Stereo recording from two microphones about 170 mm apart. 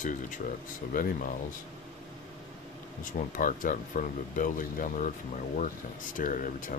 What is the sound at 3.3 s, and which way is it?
Speech, 50° left (ahead or behind).